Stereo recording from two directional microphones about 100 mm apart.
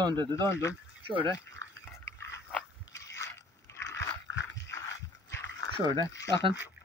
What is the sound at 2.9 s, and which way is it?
Biting, 30° left (ahead or behind).